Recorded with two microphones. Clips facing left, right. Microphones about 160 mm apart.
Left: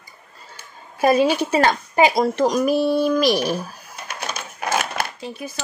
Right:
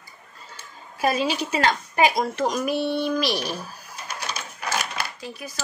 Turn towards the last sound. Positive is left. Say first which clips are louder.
# left 5 dB
turn(degrees=25)  # may be behind; listen again after turning